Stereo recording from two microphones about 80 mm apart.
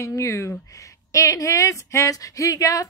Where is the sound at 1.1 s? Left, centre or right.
Left.